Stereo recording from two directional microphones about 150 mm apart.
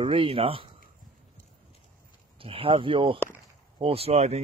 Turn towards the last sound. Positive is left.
turn(degrees=-45)  # may be behind; listen again after turning